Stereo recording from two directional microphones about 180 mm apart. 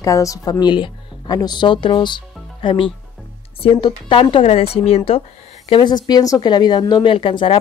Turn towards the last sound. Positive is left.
turn(degrees=25)  # may be behind; listen again after turning